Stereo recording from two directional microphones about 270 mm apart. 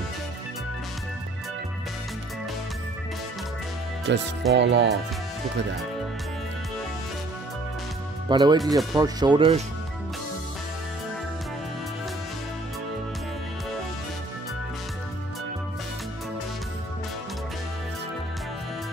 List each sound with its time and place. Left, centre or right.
4.1 s speech: right
8.3 s speech: centre